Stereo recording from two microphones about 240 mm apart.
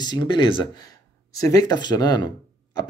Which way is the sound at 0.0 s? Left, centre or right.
Centre.